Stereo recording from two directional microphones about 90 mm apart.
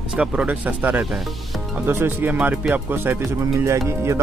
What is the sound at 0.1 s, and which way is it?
Speech, 10° right (ahead or behind).